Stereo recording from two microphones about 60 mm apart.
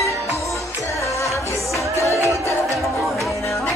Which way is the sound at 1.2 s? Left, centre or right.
Left.